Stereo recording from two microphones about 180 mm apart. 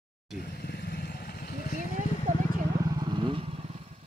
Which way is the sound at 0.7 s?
60° left (ahead or behind).